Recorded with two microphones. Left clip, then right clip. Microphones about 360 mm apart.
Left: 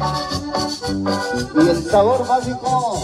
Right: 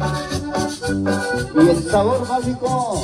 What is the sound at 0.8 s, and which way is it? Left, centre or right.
Music, left.